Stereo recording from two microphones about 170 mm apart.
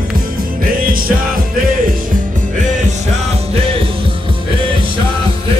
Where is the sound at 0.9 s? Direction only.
55° right (ahead or behind).